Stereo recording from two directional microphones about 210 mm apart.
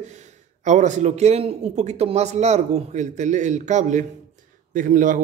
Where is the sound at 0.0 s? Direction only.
35° right (ahead or behind).